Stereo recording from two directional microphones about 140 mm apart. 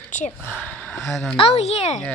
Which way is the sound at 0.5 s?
10° left (ahead or behind).